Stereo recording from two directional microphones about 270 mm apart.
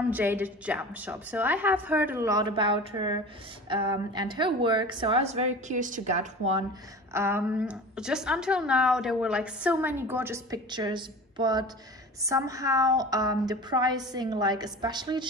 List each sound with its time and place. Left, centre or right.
0.1 s a woman's voice: centre; by 6.6 s right
7.1 s a woman's voice: centre